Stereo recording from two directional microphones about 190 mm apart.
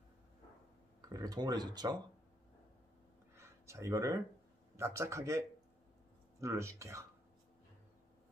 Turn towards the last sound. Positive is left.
turn(degrees=-15)  # may be behind; listen again after turning